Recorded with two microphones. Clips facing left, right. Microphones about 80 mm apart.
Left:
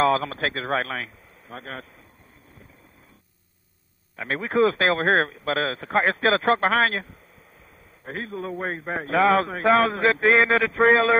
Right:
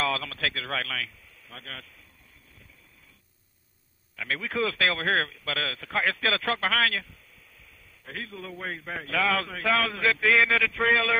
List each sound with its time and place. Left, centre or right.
0.0 s a man's voice: left
4.2 s a man's voice: left